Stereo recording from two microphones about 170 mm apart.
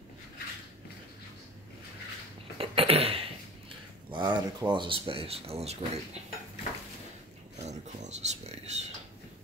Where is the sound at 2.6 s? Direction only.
35° right (ahead or behind).